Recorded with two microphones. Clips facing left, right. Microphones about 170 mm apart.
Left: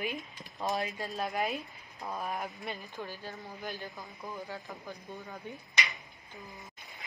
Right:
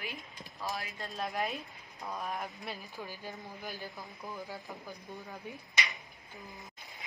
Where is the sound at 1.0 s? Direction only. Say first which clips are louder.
Left 2 dB; centre (ahead or behind).